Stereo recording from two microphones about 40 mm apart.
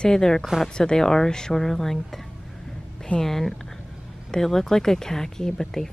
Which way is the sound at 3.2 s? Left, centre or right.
Centre.